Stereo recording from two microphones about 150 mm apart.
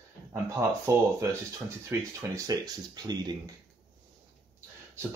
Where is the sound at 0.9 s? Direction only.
20° right (ahead or behind).